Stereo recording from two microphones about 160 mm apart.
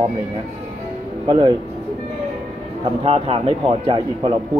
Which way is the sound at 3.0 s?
40° right (ahead or behind).